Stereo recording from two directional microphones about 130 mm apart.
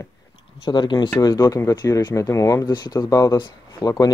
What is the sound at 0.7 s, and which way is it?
Speech, 35° left (ahead or behind).